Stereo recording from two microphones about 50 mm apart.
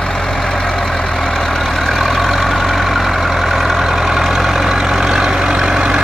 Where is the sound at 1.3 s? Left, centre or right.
Centre.